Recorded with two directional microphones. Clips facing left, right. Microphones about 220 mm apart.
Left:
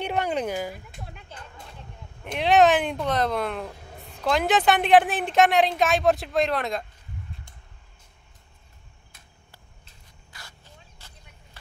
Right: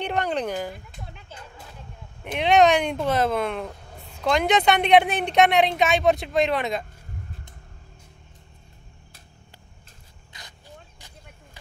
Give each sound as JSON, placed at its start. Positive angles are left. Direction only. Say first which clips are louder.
{"t": 0.0, "sound": "speech", "louder": "even", "side_deg": 10}
{"t": 2.2, "sound": "speech", "louder": "right 1 dB", "side_deg": 0}
{"t": 10.3, "sound": "a sound", "louder": "right 1 dB", "side_deg": -20}